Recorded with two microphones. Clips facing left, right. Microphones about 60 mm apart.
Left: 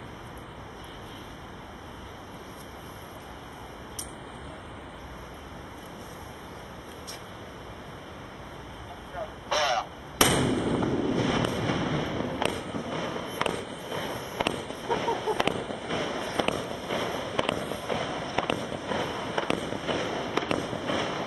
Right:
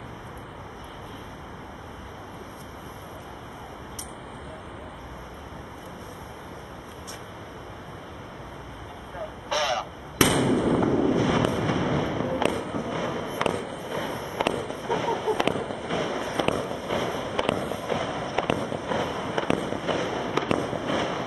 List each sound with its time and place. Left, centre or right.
9.5 s honk: left
10.2 s fireworks: centre